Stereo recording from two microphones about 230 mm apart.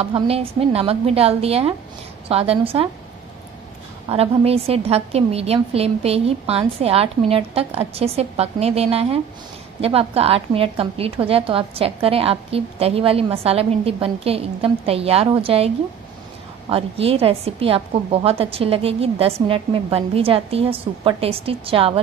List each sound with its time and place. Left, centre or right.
0.0 s a woman's voice: right
4.1 s a woman's voice: right